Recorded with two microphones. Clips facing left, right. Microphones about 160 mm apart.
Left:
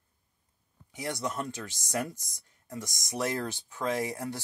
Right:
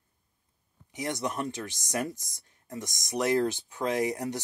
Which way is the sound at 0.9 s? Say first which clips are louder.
Right 2 dB; 20° right (ahead or behind).